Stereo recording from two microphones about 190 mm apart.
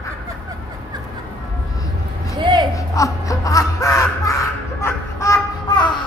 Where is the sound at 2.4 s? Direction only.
25° right (ahead or behind).